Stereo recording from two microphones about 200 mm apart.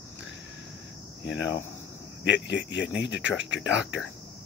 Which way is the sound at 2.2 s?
65° left (ahead or behind).